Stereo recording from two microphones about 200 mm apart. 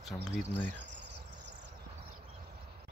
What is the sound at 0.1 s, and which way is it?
Speech, 5° left (ahead or behind).